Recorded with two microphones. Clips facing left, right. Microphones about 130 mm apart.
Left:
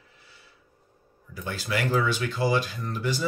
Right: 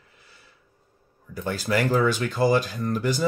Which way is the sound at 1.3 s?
45° right (ahead or behind).